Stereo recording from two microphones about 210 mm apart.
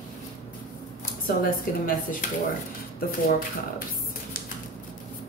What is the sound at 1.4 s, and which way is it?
Speech, 40° left (ahead or behind).